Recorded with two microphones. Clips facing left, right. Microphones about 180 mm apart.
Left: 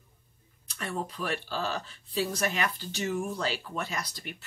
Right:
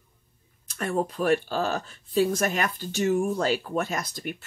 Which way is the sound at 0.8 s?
50° right (ahead or behind).